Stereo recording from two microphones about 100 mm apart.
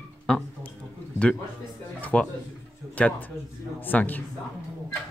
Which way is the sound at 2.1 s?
10° left (ahead or behind).